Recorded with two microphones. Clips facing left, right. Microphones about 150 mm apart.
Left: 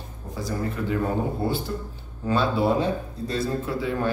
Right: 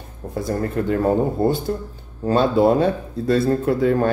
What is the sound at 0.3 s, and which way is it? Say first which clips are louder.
Speech: right 6 dB; 55° right (ahead or behind).